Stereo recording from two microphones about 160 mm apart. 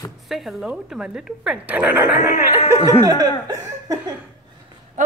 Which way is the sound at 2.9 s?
20° right (ahead or behind).